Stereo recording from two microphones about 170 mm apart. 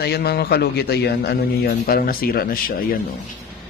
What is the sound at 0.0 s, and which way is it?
A man's voice, 70° left (ahead or behind).